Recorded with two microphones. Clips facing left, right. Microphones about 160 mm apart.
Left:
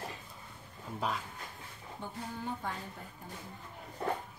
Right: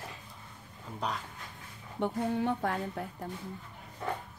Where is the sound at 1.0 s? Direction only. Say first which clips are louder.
Even; centre (ahead or behind).